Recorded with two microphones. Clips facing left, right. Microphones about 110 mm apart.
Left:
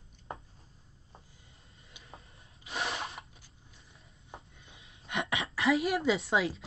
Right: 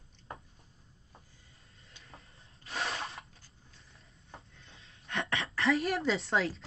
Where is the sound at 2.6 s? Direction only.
Centre (ahead or behind).